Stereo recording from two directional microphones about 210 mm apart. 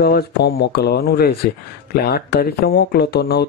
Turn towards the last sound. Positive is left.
turn(degrees=50)  # may be behind; listen again after turning